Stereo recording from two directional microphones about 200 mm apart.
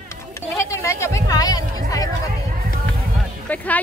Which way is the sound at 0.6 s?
15° left (ahead or behind).